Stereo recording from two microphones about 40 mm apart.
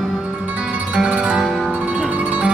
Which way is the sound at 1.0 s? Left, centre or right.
Right.